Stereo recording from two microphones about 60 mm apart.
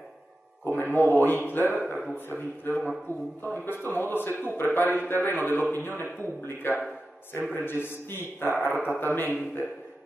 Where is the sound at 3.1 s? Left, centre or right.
Right.